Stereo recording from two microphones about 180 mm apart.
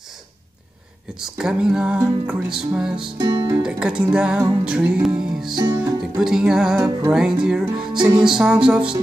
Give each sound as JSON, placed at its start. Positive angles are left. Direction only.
{"t": 1.2, "sound": "music", "side_deg": -5}
{"t": 3.2, "sound": "music", "side_deg": -20}
{"t": 3.6, "sound": "music", "side_deg": -5}
{"t": 6.8, "sound": "music", "side_deg": -15}